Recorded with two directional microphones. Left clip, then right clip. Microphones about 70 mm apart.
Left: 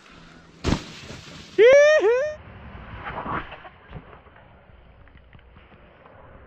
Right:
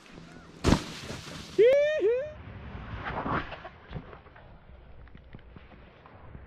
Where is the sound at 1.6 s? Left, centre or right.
Left.